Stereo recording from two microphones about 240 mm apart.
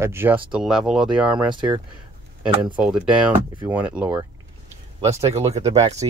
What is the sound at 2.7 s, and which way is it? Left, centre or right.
Speech, centre.